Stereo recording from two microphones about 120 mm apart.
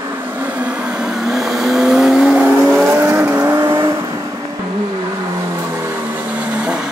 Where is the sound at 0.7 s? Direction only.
10° right (ahead or behind); by 3.9 s 25° right (ahead or behind).